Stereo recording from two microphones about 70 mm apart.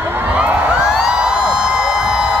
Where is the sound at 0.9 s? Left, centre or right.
Centre.